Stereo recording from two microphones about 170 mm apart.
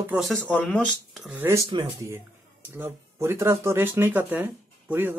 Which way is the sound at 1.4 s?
15° right (ahead or behind).